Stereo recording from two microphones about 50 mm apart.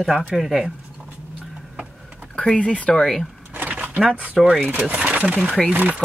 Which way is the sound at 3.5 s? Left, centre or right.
Right.